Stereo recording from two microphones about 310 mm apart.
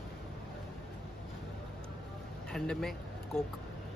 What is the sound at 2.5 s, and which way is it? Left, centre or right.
Vehicle, centre.